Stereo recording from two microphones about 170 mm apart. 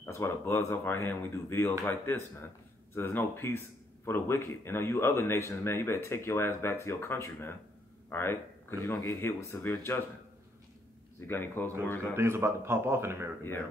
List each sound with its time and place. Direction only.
0.0 s speech: 15° left (ahead or behind)
8.1 s a sound: 15° left (ahead or behind)
8.8 s speech: 20° left (ahead or behind)
11.2 s speech: 10° left (ahead or behind)
12.0 s speech: 15° right (ahead or behind)
13.4 s speech: 10° left (ahead or behind)